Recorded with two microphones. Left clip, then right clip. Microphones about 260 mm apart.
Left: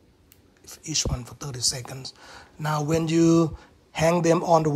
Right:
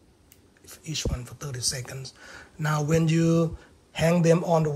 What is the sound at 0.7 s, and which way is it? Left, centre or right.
Speech, left.